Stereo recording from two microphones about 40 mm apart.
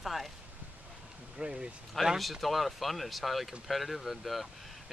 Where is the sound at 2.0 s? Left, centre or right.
Centre.